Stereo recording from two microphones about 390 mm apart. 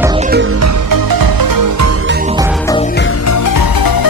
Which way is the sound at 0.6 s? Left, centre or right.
Right.